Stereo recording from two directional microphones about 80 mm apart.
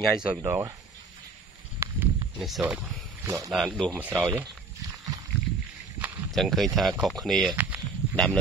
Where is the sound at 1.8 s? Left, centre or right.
Right.